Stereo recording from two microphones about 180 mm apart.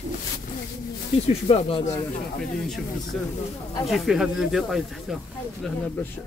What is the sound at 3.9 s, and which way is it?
Speech, centre (ahead or behind).